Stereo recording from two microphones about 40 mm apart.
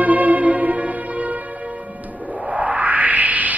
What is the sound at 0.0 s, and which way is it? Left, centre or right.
Music, right.